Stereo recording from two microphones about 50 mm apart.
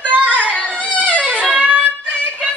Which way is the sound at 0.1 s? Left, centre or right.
Right.